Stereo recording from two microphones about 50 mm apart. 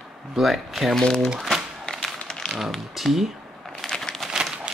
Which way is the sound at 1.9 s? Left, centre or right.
Centre.